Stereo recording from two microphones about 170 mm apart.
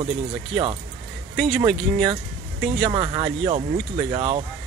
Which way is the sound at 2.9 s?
30° right (ahead or behind).